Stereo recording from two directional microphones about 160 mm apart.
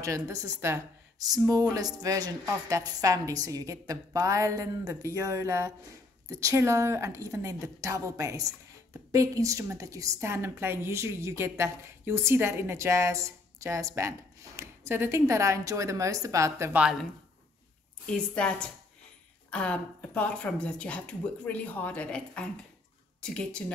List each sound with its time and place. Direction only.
0.0 s a woman's voice: 20° right (ahead or behind)
16.8 s a woman's voice: centre (ahead or behind)